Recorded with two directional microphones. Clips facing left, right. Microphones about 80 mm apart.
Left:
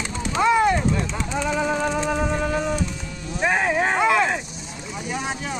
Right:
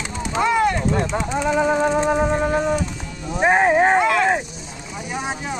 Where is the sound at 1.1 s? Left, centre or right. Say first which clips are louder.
Right 4 dB; centre.